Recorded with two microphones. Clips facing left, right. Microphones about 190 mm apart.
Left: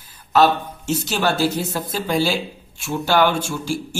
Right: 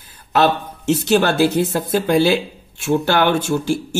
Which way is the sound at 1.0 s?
55° right (ahead or behind).